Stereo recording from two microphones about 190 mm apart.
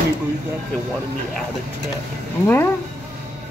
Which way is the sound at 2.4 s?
10° left (ahead or behind).